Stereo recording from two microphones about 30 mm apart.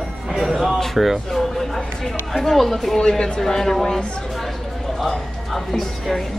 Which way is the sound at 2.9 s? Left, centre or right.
Left.